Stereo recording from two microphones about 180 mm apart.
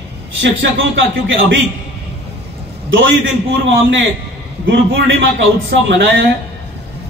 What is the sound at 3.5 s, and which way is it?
A man's voice, 90° right.